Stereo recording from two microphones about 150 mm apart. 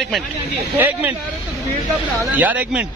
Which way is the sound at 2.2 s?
10° right (ahead or behind).